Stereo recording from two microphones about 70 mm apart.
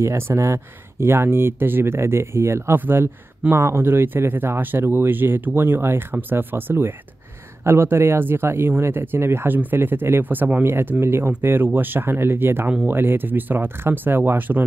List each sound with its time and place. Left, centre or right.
0.0 s speech: right
2.8 s speech: right